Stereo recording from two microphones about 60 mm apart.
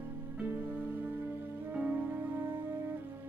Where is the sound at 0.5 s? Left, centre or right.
Right.